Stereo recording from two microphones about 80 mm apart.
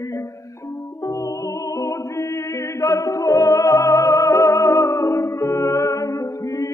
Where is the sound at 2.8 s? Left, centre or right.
Left.